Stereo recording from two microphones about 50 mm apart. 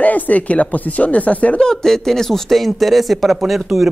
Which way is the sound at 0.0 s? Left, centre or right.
Left.